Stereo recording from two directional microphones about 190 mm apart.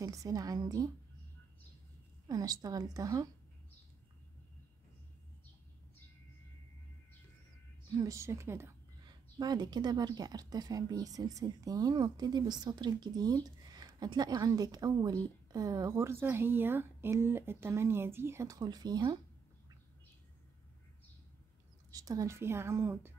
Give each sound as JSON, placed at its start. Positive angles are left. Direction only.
{"t": 0.0, "sound": "a woman's voice", "side_deg": -20}
{"t": 2.2, "sound": "a woman's voice", "side_deg": -20}
{"t": 7.9, "sound": "a woman's voice", "side_deg": -20}
{"t": 21.9, "sound": "a woman's voice", "side_deg": -20}